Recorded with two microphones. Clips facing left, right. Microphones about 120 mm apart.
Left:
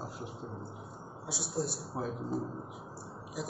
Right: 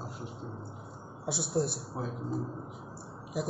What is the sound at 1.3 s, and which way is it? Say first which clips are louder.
Speech: right 5 dB; 60° right (ahead or behind).